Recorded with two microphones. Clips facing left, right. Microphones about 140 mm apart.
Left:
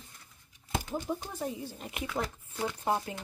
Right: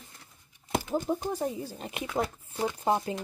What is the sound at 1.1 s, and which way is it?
Speech, 30° right (ahead or behind).